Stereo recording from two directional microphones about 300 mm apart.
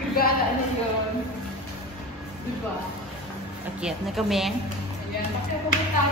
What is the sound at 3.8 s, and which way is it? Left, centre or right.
Speech, centre.